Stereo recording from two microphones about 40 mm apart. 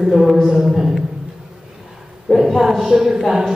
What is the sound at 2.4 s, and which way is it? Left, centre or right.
Speech, centre.